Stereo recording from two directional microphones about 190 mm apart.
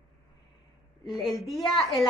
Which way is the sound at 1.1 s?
Centre (ahead or behind).